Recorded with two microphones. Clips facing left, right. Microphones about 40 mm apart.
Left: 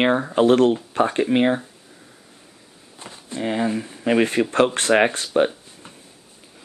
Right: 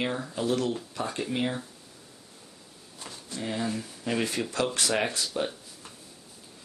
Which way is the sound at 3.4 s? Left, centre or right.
Left.